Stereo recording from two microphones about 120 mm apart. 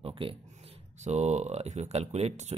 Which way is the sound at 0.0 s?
50° right (ahead or behind).